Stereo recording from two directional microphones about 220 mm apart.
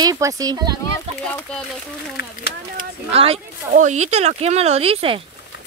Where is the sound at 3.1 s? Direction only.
25° right (ahead or behind).